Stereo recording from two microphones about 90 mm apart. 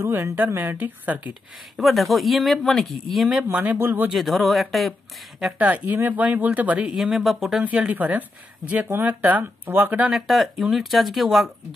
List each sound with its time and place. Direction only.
0.0 s speech: 25° right (ahead or behind)
1.8 s speech: centre (ahead or behind)
3.5 s speech: 20° right (ahead or behind)
4.1 s speech: centre (ahead or behind)
5.6 s speech: 15° right (ahead or behind)
7.0 s speech: 5° right (ahead or behind)
7.6 s speech: 15° right (ahead or behind)
10.1 s speech: 5° right (ahead or behind)